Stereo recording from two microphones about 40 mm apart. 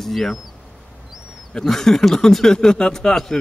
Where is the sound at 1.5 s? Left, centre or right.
Centre.